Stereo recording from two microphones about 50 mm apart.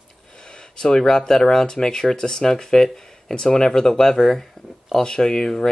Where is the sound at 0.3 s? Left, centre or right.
Centre.